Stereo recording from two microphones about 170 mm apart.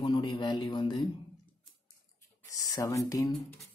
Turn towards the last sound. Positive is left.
turn(degrees=20)  # may be behind; listen again after turning